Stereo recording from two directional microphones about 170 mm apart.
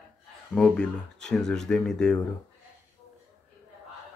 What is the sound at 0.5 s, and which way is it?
Speech, 5° left (ahead or behind).